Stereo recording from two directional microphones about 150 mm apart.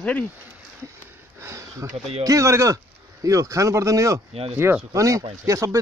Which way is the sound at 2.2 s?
20° right (ahead or behind).